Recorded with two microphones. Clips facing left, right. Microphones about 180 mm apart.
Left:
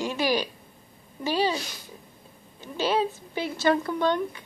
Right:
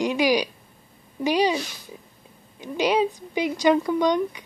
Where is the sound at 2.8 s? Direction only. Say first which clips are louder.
Right 4 dB; 15° right (ahead or behind).